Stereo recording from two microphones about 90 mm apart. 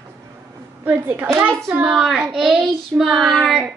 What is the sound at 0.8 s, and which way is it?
Speech, 20° right (ahead or behind).